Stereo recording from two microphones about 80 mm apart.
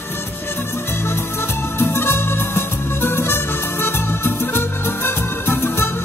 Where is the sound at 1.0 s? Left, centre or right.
Left.